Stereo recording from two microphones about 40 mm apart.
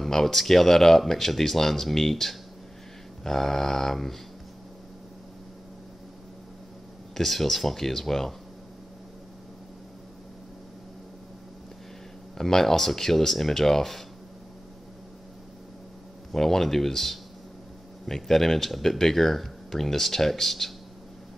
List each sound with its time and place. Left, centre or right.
0.0 s speech: centre
7.2 s speech: centre
12.4 s speech: centre
16.3 s speech: centre